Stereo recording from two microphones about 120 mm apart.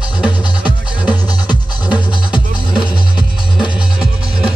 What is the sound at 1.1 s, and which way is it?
Music, 35° left (ahead or behind).